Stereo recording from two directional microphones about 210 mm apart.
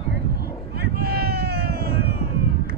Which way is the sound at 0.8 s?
50° right (ahead or behind).